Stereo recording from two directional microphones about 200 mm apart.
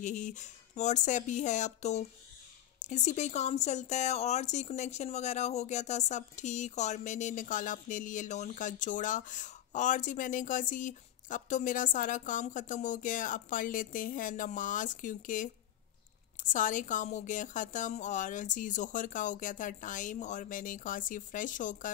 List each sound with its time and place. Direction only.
0.0 s speech: 40° left (ahead or behind)